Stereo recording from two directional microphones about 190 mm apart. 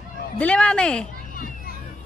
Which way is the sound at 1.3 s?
50° left (ahead or behind).